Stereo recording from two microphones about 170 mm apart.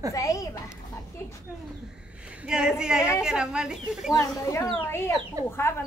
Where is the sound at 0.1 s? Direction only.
20° left (ahead or behind).